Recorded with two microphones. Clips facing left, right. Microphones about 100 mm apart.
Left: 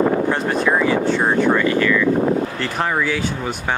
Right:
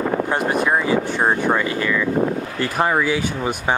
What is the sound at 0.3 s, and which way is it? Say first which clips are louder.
Speech: left 1 dB; 15° right (ahead or behind).